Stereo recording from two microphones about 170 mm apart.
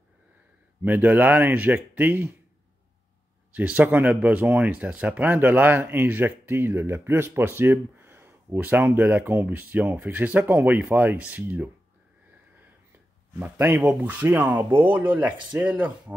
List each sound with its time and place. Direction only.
0.8 s speech: 10° right (ahead or behind)
3.5 s speech: 10° right (ahead or behind)
13.4 s speech: 10° right (ahead or behind)